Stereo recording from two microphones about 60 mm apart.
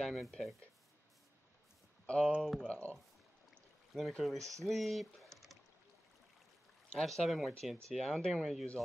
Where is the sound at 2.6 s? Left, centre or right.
Centre.